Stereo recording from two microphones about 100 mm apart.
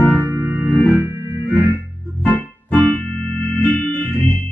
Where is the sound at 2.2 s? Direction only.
15° left (ahead or behind).